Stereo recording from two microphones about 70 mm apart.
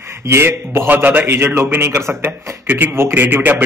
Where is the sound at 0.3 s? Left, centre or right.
Right.